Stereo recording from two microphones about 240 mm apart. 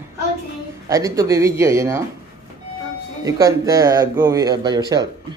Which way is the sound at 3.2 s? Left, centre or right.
Centre.